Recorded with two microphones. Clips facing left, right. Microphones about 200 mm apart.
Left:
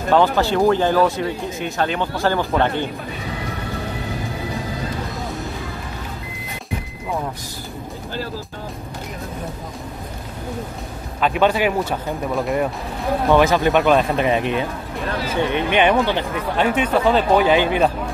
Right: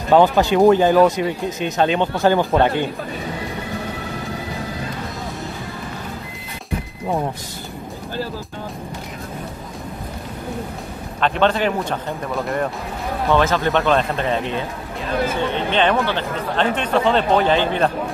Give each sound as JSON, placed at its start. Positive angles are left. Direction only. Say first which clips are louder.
{"t": 0.1, "sound": "speech", "louder": "right 3 dB", "side_deg": -15}
{"t": 11.1, "sound": "speech", "louder": "left 1 dB", "side_deg": 10}
{"t": 13.3, "sound": "speech", "louder": "left 2 dB", "side_deg": 15}